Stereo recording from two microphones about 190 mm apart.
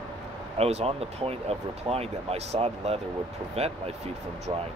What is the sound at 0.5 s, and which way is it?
Speech, 35° right (ahead or behind).